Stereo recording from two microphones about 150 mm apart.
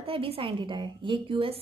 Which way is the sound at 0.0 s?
40° right (ahead or behind).